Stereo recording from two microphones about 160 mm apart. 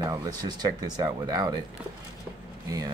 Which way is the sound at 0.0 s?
25° right (ahead or behind).